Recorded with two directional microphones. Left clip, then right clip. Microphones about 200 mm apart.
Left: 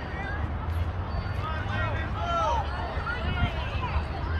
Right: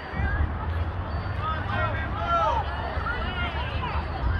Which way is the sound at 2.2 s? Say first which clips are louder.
Right 4 dB; 20° right (ahead or behind).